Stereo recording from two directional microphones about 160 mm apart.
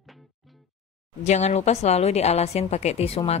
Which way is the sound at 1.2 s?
45° left (ahead or behind).